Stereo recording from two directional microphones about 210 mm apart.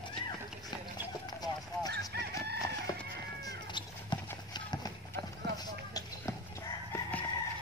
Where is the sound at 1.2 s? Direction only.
20° left (ahead or behind).